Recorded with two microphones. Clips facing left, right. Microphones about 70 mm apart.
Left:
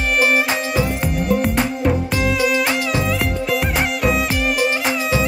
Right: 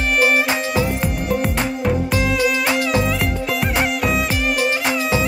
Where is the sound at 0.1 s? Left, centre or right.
Centre.